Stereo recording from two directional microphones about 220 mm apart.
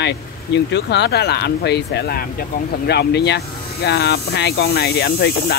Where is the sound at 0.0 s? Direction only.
50° left (ahead or behind).